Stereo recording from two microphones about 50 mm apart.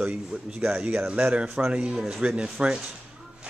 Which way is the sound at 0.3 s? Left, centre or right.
Centre.